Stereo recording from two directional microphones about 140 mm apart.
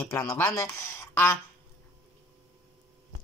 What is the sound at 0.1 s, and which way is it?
Speech, 15° left (ahead or behind).